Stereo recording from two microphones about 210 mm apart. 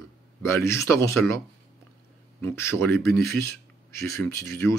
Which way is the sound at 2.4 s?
10° left (ahead or behind).